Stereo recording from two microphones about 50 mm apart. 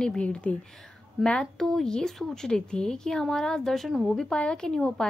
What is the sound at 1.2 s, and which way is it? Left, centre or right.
Speech, centre.